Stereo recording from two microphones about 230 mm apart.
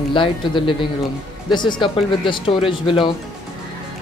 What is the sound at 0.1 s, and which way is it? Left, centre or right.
Speech, left.